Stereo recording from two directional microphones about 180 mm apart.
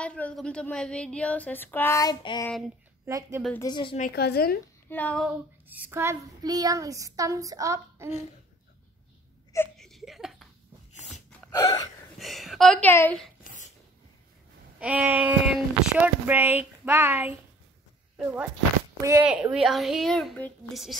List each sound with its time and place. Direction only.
0.0 s speech: 5° left (ahead or behind); by 2.5 s 20° left (ahead or behind)
3.1 s speech: 15° right (ahead or behind)
3.5 s a woman's voice: 25° left (ahead or behind)
4.1 s a woman's voice: 65° left (ahead or behind)
4.8 s speech: 10° left (ahead or behind)
5.7 s speech: 10° right (ahead or behind)
9.8 s a sound: centre (ahead or behind)
10.9 s a sound: 40° left (ahead or behind)
11.5 s gasp: 25° left (ahead or behind)
12.2 s a woman's voice: centre (ahead or behind)
13.4 s a sound: 45° left (ahead or behind)
14.8 s speech: 5° right (ahead or behind)
19.2 s a woman's voice: 5° right (ahead or behind)